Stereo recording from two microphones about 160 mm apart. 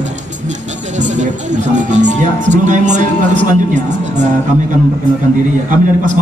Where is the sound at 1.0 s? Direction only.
50° right (ahead or behind).